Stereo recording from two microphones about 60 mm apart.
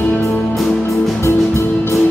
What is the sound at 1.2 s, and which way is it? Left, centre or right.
Music, left.